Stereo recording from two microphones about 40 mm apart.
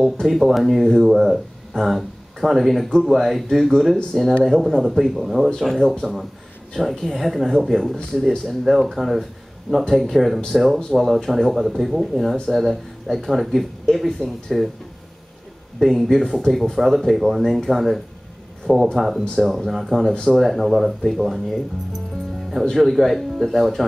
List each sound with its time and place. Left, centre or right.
0.0 s speech: centre
5.8 s speech: left
6.7 s speech: centre
15.8 s speech: centre
16.2 s speech: centre
16.4 s speech: centre
16.7 s speech: centre
22.8 s speech: centre